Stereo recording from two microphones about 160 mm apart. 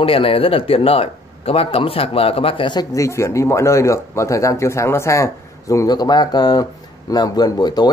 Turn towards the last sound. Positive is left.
turn(degrees=25)  # may be behind; listen again after turning